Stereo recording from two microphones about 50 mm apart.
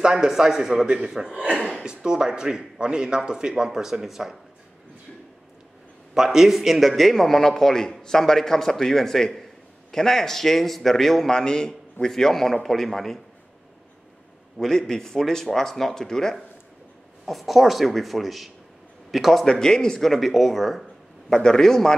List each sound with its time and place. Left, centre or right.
0.0 s speech: centre
6.1 s a man's voice: centre
14.6 s a man's voice: centre
17.3 s speech: centre
19.4 s speech: centre
21.3 s a man's voice: centre